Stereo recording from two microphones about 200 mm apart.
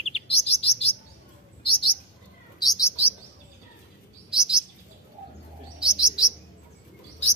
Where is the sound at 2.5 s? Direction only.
20° left (ahead or behind).